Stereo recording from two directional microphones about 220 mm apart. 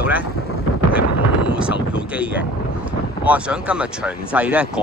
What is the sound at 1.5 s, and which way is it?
Speech, 5° right (ahead or behind).